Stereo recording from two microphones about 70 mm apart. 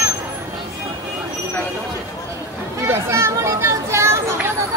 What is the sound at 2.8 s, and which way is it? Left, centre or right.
Chatter, right.